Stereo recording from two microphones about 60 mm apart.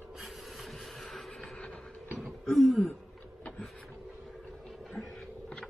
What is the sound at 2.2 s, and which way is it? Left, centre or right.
Throat clearing, centre.